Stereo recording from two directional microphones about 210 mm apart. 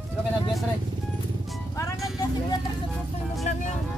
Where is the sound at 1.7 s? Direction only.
15° left (ahead or behind).